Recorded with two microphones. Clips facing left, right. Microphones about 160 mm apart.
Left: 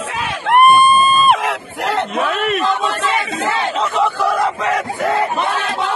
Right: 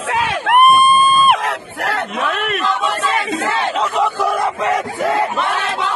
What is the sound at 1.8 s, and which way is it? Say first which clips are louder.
Speech: left 3 dB; 20° left (ahead or behind).